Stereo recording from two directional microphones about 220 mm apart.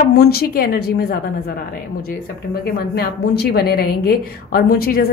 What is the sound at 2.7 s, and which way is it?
A woman's voice, 45° left (ahead or behind).